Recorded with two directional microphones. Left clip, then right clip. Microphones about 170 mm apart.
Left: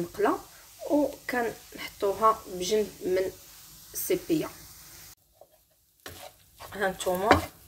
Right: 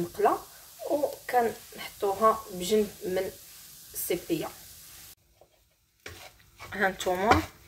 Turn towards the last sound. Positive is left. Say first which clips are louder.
# right 1 dB
turn(degrees=0)  # may be behind; listen again after turning